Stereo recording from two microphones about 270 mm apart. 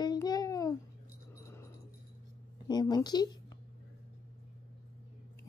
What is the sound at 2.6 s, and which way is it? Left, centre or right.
Groan, centre.